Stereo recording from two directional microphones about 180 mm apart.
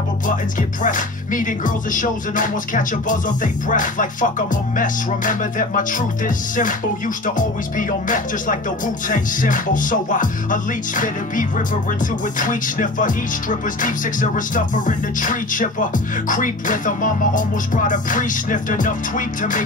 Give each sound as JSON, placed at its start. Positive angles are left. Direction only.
{"t": 0.6, "sound": "music", "side_deg": 45}